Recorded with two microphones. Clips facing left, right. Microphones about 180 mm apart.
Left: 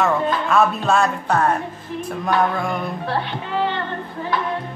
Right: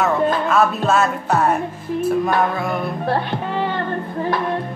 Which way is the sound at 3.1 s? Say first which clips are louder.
Right 4 dB; 45° right (ahead or behind).